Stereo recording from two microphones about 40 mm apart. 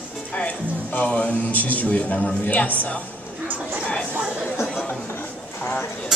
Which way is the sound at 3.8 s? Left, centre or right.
Left.